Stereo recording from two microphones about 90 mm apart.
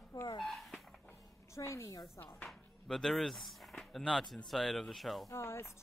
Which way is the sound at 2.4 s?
5° left (ahead or behind).